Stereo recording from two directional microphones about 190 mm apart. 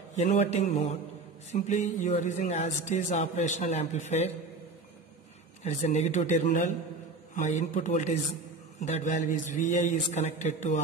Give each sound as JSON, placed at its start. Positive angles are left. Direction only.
{"t": 0.2, "sound": "speech", "side_deg": 35}
{"t": 5.6, "sound": "speech", "side_deg": 40}